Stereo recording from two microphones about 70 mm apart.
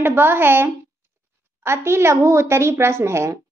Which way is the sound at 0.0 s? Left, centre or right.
Right.